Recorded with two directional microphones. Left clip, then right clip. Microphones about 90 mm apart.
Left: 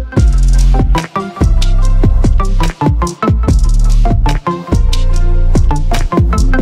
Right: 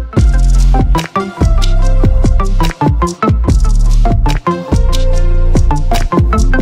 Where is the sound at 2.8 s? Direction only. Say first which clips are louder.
Right 1 dB; centre (ahead or behind).